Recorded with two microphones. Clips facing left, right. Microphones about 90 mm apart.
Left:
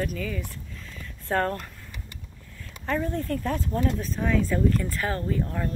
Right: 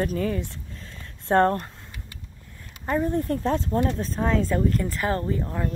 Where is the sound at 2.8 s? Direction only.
20° right (ahead or behind).